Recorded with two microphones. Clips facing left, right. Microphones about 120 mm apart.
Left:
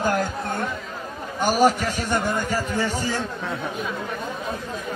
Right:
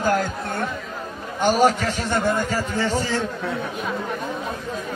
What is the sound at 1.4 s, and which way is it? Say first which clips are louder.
A man's voice: right 1 dB; 10° left (ahead or behind).